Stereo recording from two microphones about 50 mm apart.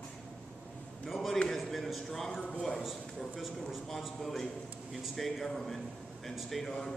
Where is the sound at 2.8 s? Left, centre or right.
Centre.